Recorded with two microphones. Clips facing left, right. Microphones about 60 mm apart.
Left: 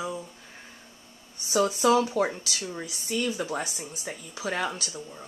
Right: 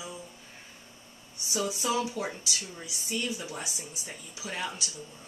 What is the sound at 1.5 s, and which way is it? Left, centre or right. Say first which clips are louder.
Speech: left 8 dB; left.